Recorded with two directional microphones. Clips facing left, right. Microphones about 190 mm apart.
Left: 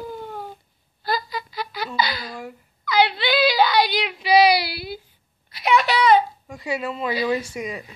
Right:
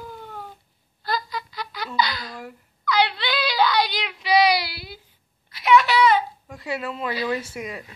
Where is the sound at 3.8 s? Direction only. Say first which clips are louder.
Left 4 dB; 10° left (ahead or behind).